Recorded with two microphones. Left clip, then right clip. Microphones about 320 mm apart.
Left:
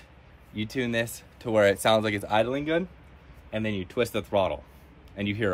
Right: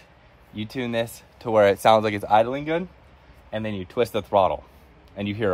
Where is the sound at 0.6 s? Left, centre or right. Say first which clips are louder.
Right 2 dB; centre.